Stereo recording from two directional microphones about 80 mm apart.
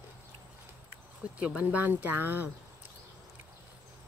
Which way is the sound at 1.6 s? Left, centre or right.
Centre.